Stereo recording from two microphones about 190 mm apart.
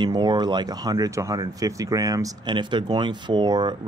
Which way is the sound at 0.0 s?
25° right (ahead or behind).